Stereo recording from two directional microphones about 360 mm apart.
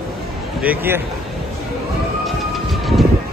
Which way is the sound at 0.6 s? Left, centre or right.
Centre.